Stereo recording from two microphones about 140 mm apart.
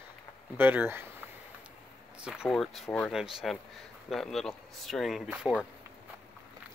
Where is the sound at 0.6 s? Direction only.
15° right (ahead or behind).